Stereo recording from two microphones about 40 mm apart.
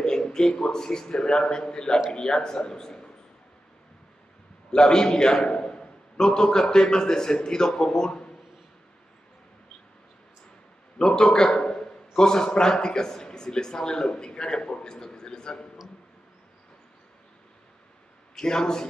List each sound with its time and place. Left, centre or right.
0.0 s a man's voice: centre
4.7 s a man's voice: centre
11.0 s a man's voice: centre
18.4 s a man's voice: centre